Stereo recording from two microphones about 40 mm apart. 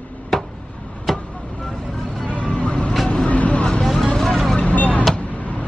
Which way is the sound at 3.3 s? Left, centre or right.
Left.